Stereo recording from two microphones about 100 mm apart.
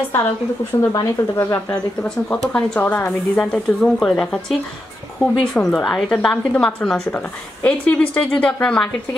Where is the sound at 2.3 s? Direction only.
10° left (ahead or behind).